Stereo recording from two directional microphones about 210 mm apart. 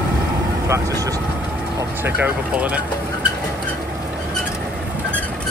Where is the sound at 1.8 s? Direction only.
10° right (ahead or behind).